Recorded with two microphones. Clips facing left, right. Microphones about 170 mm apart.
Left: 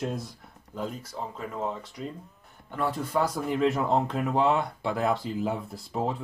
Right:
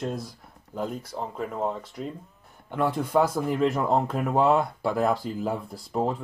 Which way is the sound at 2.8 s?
55° right (ahead or behind).